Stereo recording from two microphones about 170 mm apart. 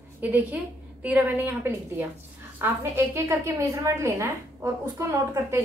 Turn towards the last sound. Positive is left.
turn(degrees=-15)  # may be behind; listen again after turning